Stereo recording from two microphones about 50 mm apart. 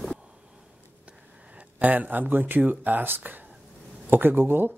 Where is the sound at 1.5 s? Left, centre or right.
Right.